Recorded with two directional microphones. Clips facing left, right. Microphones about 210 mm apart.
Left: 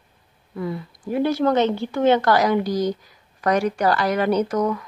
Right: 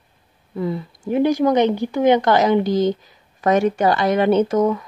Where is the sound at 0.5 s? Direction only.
25° right (ahead or behind).